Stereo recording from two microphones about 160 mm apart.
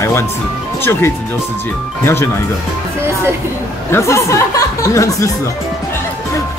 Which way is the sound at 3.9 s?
15° left (ahead or behind).